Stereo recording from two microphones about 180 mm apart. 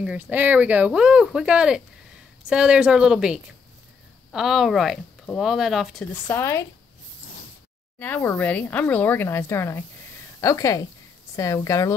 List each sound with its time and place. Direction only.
0.0 s speech: 5° right (ahead or behind)
6.2 s speech: 15° left (ahead or behind)
8.0 s speech: 10° left (ahead or behind)